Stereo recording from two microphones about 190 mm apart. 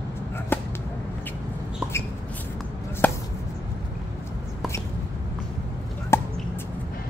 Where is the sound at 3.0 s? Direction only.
10° left (ahead or behind).